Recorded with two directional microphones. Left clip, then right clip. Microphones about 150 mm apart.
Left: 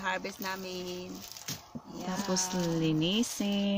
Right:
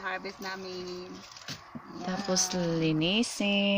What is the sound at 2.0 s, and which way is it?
Speech, centre (ahead or behind).